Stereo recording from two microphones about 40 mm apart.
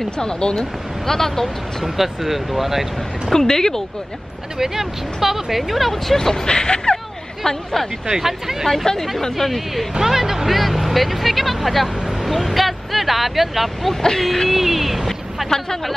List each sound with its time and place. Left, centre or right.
0.0 s speech: centre
2.0 s speech: centre
3.3 s speech: centre
4.6 s speech: centre
6.1 s speech: centre
7.4 s speech: centre
8.1 s speech: centre
8.8 s speech: centre
9.9 s speech: centre
14.2 s speech: centre
14.5 s speech: centre